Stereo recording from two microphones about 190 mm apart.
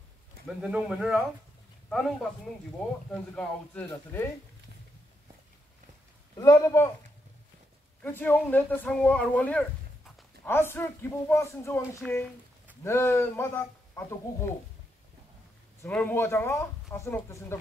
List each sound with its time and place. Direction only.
0.5 s speech: 5° right (ahead or behind)
6.3 s speech: 20° left (ahead or behind)
8.0 s speech: 10° left (ahead or behind)
15.8 s speech: 10° left (ahead or behind)